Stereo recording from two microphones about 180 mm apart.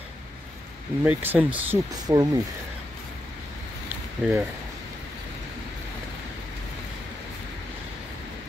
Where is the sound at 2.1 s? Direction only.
20° right (ahead or behind).